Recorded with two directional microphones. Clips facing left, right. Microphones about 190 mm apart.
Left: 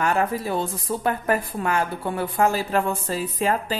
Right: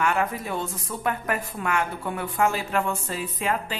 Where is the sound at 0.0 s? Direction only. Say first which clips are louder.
Left 3 dB; 35° left (ahead or behind).